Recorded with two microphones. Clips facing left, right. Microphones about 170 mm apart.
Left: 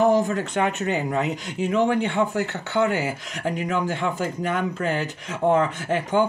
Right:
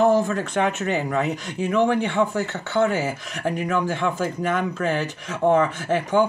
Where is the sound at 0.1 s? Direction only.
15° left (ahead or behind).